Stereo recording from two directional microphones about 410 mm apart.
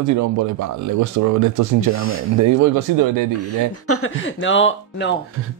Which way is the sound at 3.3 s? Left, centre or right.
Left.